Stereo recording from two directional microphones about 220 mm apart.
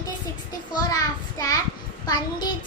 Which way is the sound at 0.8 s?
15° left (ahead or behind).